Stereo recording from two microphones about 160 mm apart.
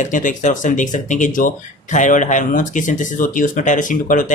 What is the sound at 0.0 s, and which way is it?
Speech, 55° left (ahead or behind).